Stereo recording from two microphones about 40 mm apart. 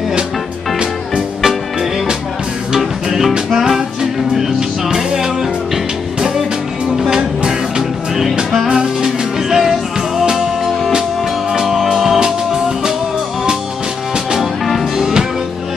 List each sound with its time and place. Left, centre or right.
1.4 s music: centre
3.3 s music: centre
7.0 s music: centre
8.6 s music: centre
11.5 s music: centre
12.2 s music: centre
14.4 s music: centre